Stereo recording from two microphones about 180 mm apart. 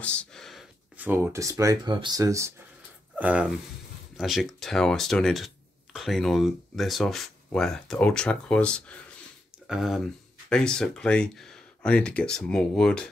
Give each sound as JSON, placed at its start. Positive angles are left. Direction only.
{"t": 0.0, "sound": "speech", "side_deg": 5}